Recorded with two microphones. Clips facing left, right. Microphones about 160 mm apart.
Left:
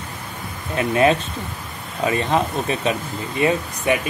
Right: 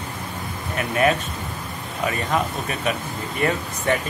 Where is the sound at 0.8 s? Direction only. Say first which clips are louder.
Left 4 dB; 25° left (ahead or behind).